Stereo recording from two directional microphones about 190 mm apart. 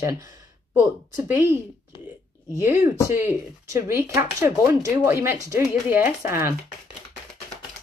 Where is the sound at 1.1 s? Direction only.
15° right (ahead or behind).